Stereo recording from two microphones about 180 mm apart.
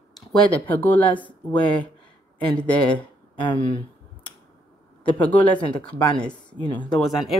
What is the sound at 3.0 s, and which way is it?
Speech, 25° left (ahead or behind).